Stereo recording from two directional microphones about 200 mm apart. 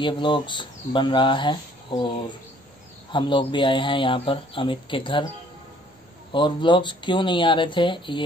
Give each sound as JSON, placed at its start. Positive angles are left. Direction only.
{"t": 0.0, "sound": "speech", "side_deg": 25}
{"t": 6.3, "sound": "speech", "side_deg": 25}